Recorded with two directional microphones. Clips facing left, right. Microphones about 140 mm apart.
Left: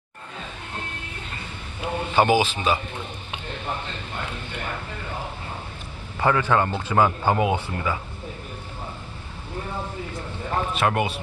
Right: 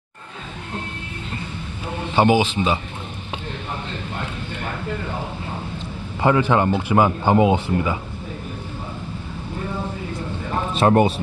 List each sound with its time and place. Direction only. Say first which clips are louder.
2.1 s speech: right 3 dB; 20° right (ahead or behind)
6.2 s speech: right 4 dB; 20° right (ahead or behind)
10.7 s a man's voice: right 10 dB; 30° right (ahead or behind)